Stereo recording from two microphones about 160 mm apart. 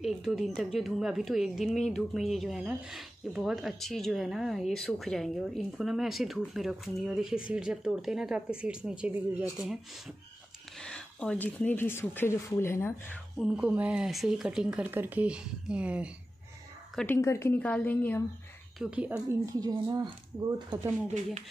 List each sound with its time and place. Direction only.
0.0 s speech: centre (ahead or behind); by 12.9 s 15° left (ahead or behind)
13.4 s speech: 5° right (ahead or behind)
16.9 s speech: 10° left (ahead or behind)
18.8 s speech: 10° right (ahead or behind)
19.4 s speech: 25° right (ahead or behind)